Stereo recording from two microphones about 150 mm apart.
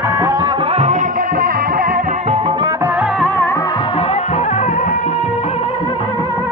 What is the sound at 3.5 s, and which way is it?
Music, 25° left (ahead or behind).